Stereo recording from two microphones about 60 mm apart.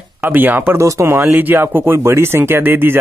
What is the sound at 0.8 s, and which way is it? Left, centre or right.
Speech, right.